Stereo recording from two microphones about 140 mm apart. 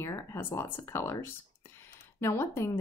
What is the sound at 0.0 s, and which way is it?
Speech, 20° left (ahead or behind).